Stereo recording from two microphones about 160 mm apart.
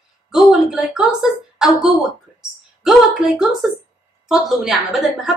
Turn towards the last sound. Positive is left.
turn(degrees=0)  # may be behind; listen again after turning